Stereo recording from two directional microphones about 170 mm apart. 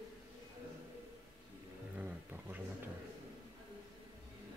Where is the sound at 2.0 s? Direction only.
10° right (ahead or behind).